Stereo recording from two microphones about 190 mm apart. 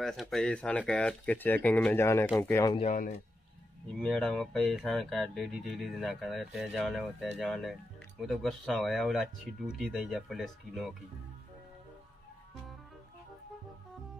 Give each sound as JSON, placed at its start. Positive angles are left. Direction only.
{"t": 0.0, "sound": "speech", "side_deg": 0}
{"t": 2.8, "sound": "a man's voice", "side_deg": 40}
{"t": 4.0, "sound": "speech", "side_deg": 5}